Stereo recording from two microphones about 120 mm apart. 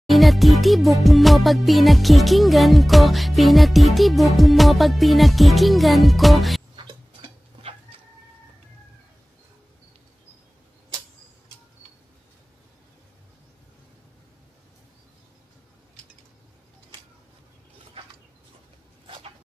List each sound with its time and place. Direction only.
0.0 s music: centre (ahead or behind)
6.8 s tick-tock: 45° right (ahead or behind)
19.0 s a sound: 45° right (ahead or behind)